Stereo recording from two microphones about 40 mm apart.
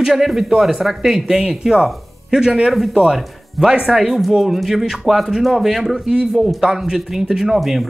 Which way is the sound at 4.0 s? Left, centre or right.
Centre.